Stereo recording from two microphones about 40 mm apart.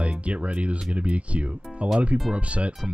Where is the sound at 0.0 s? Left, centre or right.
Right.